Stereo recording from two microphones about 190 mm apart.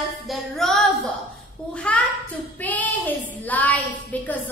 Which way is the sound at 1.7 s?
5° left (ahead or behind).